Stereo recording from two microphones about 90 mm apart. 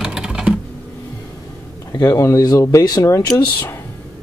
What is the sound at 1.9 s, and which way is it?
Speech, 45° left (ahead or behind).